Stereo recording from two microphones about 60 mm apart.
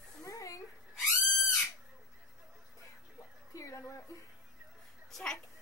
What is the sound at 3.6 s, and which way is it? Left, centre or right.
Speech, left.